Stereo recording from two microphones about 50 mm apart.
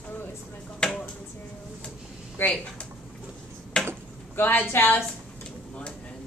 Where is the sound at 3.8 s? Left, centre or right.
Centre.